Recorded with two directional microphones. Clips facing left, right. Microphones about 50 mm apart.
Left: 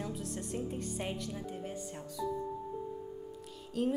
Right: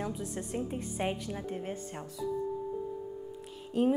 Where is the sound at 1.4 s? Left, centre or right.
Right.